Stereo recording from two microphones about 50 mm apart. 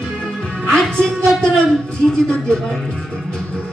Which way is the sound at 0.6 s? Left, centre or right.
Centre.